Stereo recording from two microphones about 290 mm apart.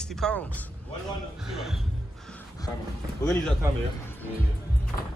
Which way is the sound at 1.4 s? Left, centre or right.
Centre.